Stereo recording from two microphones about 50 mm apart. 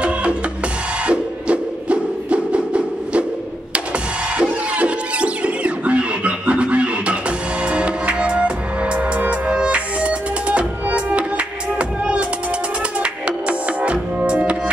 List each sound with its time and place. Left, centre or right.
0.0 s drum: right
1.0 s music: right
4.4 s music: right